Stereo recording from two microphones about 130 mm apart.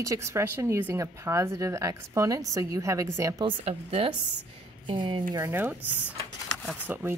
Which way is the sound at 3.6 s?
50° right (ahead or behind).